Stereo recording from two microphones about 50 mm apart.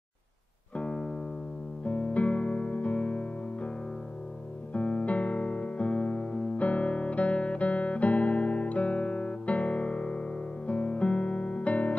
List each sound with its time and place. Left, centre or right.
0.7 s music: left
4.7 s music: left